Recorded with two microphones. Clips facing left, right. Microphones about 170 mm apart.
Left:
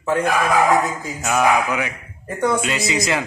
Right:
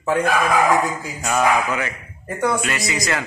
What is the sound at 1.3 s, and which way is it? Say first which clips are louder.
Speech: left 1 dB; 15° left (ahead or behind).